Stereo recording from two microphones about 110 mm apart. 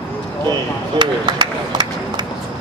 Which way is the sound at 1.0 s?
45° right (ahead or behind).